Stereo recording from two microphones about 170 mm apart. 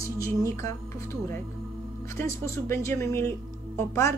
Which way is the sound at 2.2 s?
15° left (ahead or behind).